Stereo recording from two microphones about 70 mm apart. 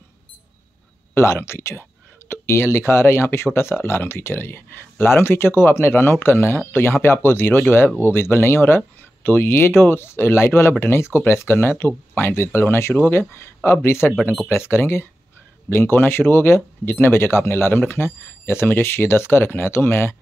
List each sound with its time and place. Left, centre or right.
1.1 s speech: left